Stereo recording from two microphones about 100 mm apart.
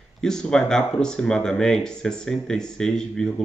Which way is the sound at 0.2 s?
5° left (ahead or behind).